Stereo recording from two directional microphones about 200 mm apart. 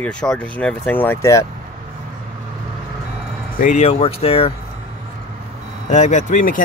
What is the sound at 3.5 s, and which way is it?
Speech, 35° left (ahead or behind).